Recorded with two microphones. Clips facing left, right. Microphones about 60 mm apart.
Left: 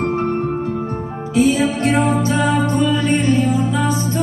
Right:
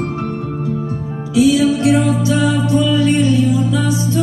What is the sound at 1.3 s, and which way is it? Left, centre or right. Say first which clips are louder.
Music: right 3 dB; left.